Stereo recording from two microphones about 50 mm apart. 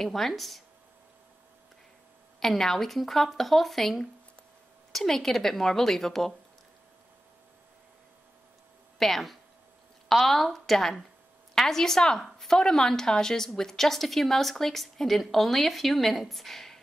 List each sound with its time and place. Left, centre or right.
0.0 s speech: centre
2.4 s a woman's voice: centre
8.9 s a woman's voice: centre